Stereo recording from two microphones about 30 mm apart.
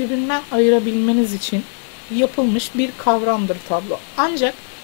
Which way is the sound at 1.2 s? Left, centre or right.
Left.